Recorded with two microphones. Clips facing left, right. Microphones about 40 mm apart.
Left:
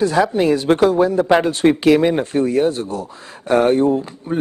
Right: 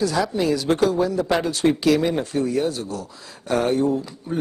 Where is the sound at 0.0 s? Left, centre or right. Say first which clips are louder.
Left 6 dB; left.